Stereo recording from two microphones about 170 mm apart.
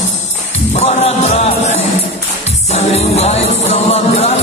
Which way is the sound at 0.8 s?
40° left (ahead or behind).